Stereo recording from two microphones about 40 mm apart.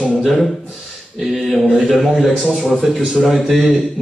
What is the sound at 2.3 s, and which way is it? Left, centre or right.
Speech, centre.